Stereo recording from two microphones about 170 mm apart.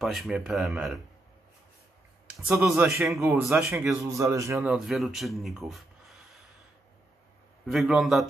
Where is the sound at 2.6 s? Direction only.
5° right (ahead or behind).